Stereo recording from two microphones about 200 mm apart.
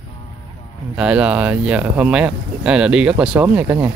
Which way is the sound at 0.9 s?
5° right (ahead or behind).